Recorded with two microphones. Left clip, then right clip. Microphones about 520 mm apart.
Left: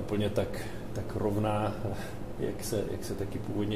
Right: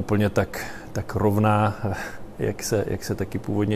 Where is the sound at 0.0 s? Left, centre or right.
Right.